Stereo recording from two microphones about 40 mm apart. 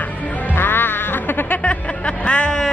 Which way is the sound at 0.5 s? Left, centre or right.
Left.